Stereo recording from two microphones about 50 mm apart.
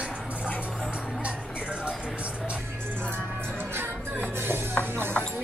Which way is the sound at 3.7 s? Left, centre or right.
Right.